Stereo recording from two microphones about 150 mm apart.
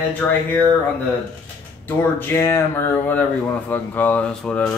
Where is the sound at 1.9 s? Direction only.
15° left (ahead or behind).